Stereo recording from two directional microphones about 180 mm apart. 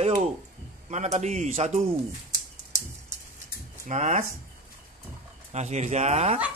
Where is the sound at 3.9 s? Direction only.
40° right (ahead or behind).